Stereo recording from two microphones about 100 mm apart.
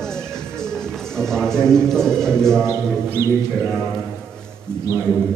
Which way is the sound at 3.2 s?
25° right (ahead or behind).